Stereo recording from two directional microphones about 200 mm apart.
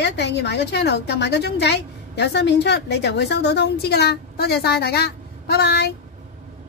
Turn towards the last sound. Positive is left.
turn(degrees=55)  # may be behind; listen again after turning